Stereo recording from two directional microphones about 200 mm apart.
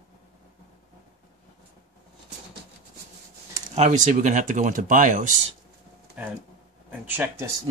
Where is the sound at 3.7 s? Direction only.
35° right (ahead or behind).